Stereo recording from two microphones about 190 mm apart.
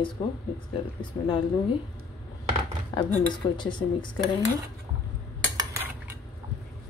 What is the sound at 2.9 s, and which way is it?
Speech, 25° left (ahead or behind).